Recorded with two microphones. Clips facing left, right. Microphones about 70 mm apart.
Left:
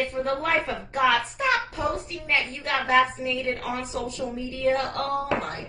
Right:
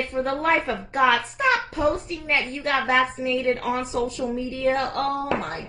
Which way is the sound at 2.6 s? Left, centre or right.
Right.